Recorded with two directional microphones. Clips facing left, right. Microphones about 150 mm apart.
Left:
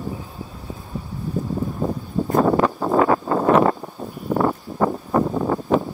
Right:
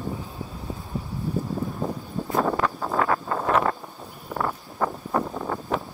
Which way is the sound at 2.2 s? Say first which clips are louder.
Left 6 dB; 45° left (ahead or behind).